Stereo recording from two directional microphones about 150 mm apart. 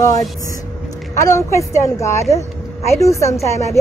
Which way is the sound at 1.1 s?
20° left (ahead or behind).